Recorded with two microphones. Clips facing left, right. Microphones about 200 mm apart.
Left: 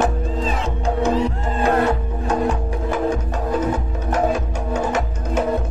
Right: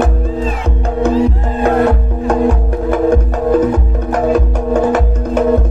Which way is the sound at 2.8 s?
55° right (ahead or behind).